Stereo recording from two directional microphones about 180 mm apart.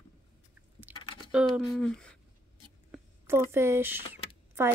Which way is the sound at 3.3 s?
15° right (ahead or behind).